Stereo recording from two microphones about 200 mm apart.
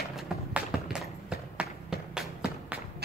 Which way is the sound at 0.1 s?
5° right (ahead or behind).